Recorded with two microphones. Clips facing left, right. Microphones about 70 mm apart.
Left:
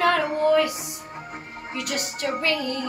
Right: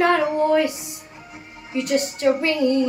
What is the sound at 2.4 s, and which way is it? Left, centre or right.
Music, right.